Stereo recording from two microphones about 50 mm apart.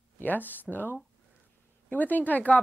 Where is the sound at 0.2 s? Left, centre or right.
Left.